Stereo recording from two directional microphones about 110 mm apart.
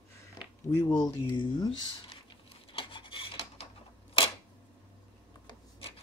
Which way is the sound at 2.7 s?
50° left (ahead or behind).